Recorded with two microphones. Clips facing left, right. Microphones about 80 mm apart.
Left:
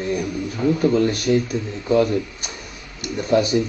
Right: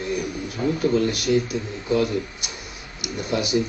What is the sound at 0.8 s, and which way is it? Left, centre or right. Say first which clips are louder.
Speech: left 1 dB; left.